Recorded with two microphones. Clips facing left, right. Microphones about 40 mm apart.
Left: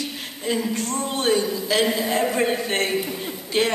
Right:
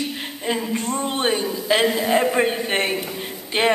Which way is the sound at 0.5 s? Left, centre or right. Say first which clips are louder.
Right 1 dB; right.